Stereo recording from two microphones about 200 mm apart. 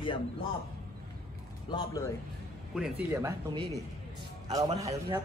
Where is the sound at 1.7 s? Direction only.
15° left (ahead or behind).